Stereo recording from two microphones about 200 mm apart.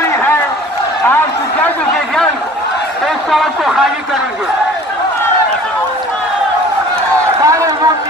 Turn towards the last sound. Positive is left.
turn(degrees=-15)  # may be behind; listen again after turning